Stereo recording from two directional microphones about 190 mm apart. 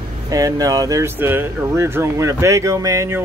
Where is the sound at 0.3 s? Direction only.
15° right (ahead or behind).